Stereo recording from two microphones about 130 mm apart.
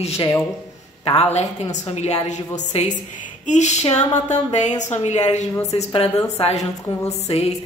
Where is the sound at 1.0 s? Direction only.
50° left (ahead or behind).